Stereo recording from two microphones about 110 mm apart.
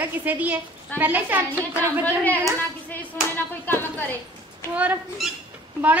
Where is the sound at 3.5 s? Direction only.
20° left (ahead or behind).